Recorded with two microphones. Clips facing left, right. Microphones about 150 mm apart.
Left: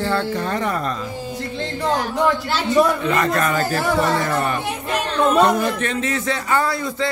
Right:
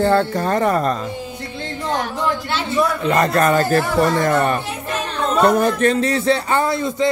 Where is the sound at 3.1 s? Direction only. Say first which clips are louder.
Right 4 dB; 35° right (ahead or behind).